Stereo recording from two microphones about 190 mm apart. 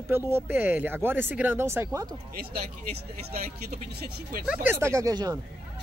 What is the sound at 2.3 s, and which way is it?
Speech, 55° right (ahead or behind).